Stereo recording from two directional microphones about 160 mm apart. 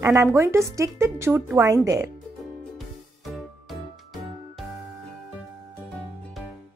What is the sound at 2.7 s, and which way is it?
Music, centre (ahead or behind).